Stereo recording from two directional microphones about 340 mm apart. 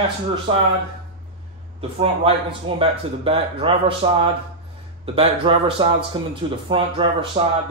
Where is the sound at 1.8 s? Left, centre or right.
Centre.